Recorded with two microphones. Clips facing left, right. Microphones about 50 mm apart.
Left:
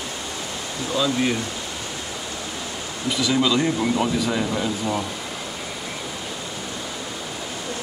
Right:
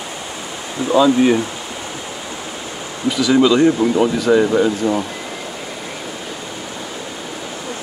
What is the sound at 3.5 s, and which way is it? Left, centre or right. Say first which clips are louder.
Speech: right 8 dB; right.